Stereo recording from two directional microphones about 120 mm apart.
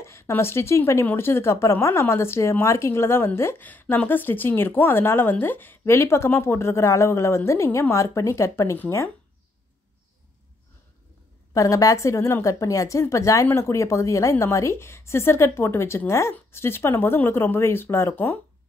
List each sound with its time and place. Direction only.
0.0 s speech: 20° left (ahead or behind)
11.5 s speech: 25° left (ahead or behind)